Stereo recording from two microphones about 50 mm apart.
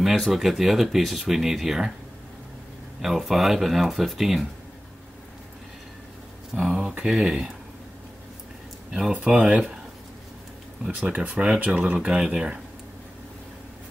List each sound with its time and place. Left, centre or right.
0.0 s speech: centre
3.0 s speech: centre
6.5 s speech: centre
8.9 s speech: centre
10.9 s speech: right
11.3 s speech: centre